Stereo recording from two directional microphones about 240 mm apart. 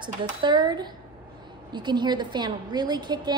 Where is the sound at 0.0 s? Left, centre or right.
Centre.